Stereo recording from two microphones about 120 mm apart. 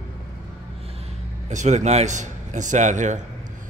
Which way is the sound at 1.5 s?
75° right (ahead or behind).